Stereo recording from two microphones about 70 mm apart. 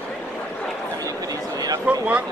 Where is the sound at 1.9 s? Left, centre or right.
Centre.